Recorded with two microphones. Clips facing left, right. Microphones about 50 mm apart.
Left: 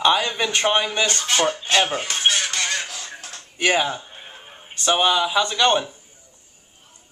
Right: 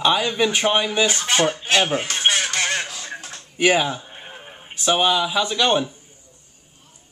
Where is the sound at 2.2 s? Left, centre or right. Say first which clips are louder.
Right 1 dB; right.